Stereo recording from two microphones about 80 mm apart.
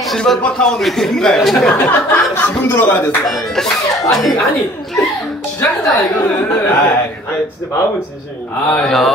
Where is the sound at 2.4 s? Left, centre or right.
Left.